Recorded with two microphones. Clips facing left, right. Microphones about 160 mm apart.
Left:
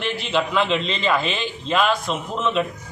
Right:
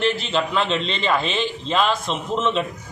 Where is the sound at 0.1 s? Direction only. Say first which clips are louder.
Even; centre (ahead or behind).